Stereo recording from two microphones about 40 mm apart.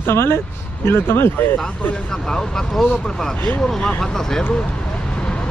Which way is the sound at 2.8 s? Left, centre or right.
Centre.